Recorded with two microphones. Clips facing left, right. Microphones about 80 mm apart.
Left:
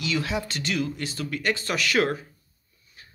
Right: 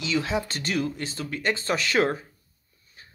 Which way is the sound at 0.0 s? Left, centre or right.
Right.